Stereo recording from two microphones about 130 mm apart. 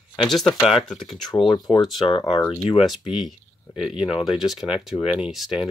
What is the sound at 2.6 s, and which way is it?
Speech, centre (ahead or behind).